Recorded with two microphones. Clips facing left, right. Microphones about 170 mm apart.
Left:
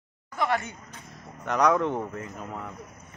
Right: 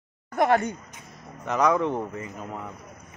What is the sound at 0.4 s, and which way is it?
Speech, 45° right (ahead or behind).